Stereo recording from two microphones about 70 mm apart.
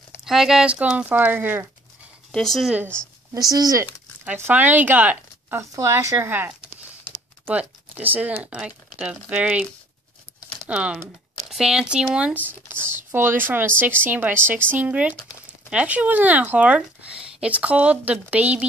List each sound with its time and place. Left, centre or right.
0.2 s speech: centre
0.7 s speech: centre
2.3 s speech: centre
3.3 s speech: right
4.2 s speech: right
5.6 s speech: right
6.1 s speech: right
10.7 s speech: centre
11.0 s speech: centre
12.4 s speech: right